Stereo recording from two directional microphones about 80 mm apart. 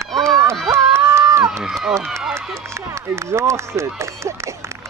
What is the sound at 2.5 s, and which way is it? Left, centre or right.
Speech, right.